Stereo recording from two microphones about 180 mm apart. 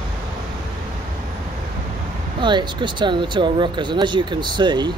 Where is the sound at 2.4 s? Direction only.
25° right (ahead or behind).